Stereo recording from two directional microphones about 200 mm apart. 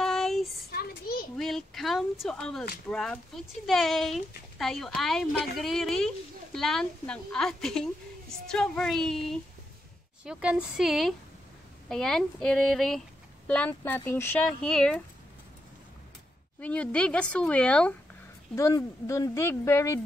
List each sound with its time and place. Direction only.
0.0 s child singing: centre (ahead or behind)
0.7 s a sound: 50° left (ahead or behind)
1.3 s speech: centre (ahead or behind)
16.6 s speech: 5° left (ahead or behind)